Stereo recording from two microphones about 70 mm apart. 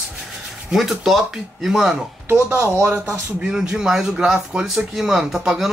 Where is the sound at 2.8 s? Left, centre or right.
Right.